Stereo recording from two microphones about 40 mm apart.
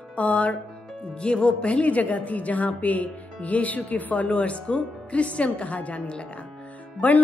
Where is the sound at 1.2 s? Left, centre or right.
Left.